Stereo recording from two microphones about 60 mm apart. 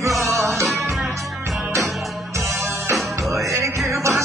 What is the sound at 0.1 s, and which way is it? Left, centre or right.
Music, centre.